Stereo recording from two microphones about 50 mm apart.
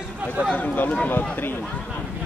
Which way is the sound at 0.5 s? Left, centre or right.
Left.